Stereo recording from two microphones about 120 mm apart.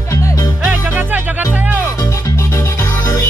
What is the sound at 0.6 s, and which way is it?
Music, 15° right (ahead or behind).